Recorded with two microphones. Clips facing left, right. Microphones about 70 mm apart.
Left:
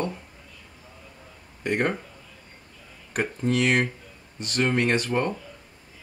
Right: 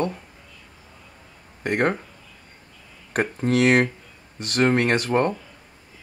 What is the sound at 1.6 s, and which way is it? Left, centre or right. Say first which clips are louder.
Speech: right 3 dB; right.